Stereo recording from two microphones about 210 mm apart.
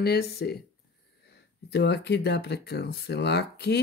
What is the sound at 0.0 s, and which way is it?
Speech, 50° left (ahead or behind).